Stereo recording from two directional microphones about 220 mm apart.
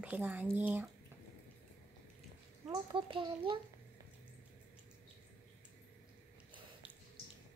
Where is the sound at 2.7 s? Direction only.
25° right (ahead or behind).